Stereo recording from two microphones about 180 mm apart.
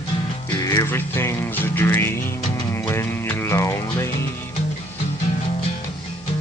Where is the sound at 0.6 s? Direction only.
20° left (ahead or behind).